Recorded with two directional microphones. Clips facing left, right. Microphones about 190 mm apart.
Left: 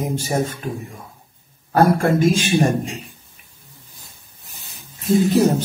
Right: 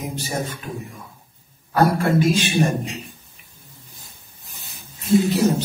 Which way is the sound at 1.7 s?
45° left (ahead or behind).